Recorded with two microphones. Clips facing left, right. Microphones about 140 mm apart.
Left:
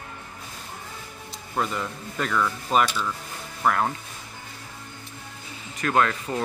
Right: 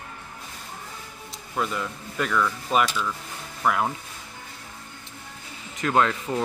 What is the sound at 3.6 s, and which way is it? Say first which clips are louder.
Speech: left 1 dB; centre (ahead or behind).